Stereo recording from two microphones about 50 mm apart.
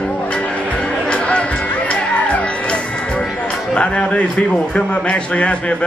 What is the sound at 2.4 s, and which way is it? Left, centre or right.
Music, left.